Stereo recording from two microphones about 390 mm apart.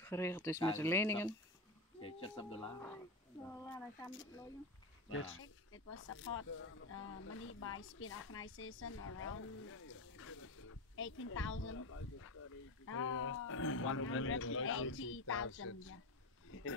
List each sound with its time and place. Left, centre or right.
0.0 s speech: centre
3.6 s speech: centre
5.1 s speech: left